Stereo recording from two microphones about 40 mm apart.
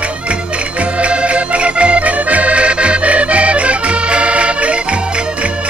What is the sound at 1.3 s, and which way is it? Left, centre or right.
Accordion, right.